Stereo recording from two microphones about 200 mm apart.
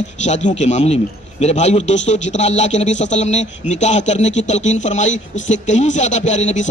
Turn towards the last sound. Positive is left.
turn(degrees=35)  # may be behind; listen again after turning